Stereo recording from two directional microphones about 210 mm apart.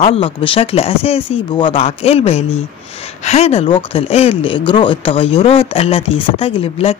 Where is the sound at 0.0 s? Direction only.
25° left (ahead or behind).